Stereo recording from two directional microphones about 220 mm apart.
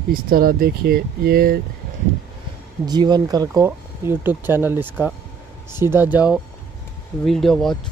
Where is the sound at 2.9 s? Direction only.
20° right (ahead or behind).